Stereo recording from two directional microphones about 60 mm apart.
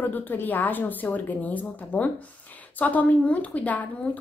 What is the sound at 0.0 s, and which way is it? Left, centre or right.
A woman's voice, left.